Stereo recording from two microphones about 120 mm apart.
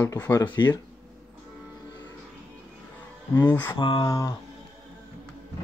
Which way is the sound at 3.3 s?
20° left (ahead or behind).